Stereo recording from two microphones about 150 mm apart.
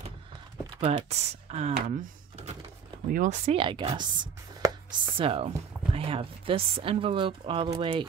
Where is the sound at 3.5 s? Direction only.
35° right (ahead or behind).